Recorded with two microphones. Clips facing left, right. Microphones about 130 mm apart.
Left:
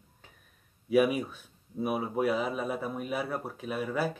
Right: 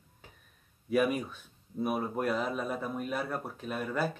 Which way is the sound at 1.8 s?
5° left (ahead or behind).